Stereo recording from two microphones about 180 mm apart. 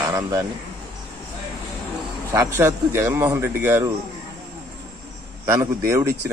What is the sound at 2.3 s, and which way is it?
A man's voice, 15° right (ahead or behind).